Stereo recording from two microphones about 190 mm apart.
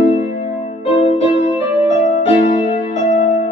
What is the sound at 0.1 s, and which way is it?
Music, 30° left (ahead or behind).